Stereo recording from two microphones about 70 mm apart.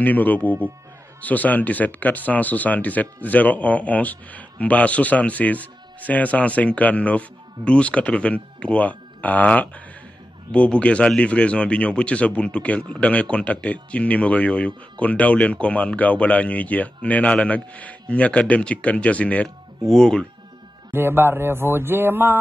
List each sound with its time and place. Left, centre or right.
0.0 s speech: left
20.9 s speech: right